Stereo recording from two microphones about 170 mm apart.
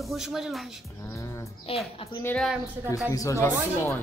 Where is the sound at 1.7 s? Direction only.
35° left (ahead or behind).